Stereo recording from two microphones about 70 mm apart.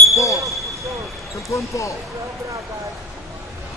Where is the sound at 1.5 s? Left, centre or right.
Left.